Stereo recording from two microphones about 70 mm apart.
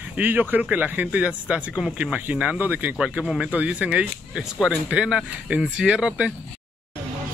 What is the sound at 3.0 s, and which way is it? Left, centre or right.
Speech, centre.